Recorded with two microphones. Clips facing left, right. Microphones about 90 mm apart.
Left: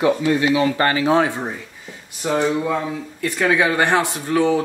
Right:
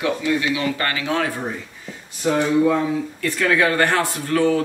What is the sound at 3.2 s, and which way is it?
Speech, 15° left (ahead or behind).